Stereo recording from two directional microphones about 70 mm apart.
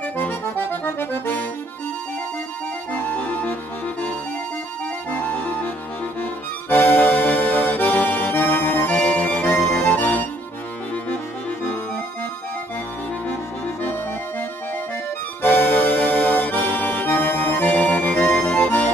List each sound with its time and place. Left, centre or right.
0.2 s accordion: left
2.9 s music: left
5.1 s music: left
6.7 s accordion: left
9.8 s music: left
15.4 s accordion: left